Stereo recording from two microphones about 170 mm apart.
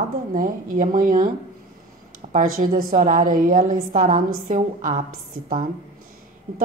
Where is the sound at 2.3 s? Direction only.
55° right (ahead or behind).